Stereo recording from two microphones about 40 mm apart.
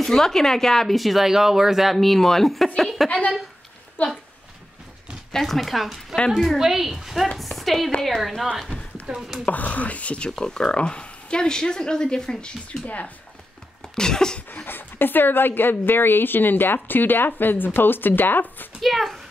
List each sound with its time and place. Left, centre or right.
0.0 s a woman's voice: centre
0.9 s speech: centre
2.0 s a woman's voice: centre
3.1 s speech: left
5.3 s speech: centre
9.1 s speech: right
9.5 s speech: left
10.3 s speech: centre
12.8 s speech: left
13.9 s a woman's voice: centre
14.5 s a woman's voice: left
18.8 s speech: centre